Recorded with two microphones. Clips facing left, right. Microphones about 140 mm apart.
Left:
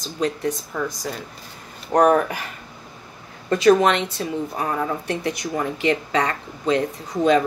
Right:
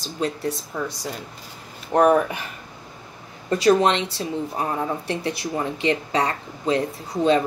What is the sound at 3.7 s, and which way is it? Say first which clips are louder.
Speech: left 1 dB; 30° right (ahead or behind).